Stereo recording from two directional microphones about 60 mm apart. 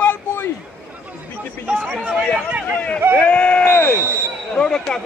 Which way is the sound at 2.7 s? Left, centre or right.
Centre.